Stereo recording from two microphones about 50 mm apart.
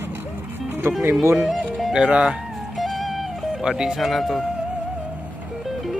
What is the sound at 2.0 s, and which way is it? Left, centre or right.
Speech, right.